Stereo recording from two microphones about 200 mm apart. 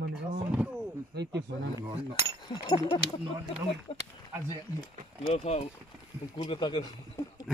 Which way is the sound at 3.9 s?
30° left (ahead or behind).